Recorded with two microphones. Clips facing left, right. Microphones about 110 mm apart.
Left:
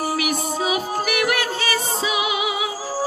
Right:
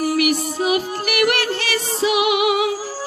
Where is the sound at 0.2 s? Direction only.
60° right (ahead or behind).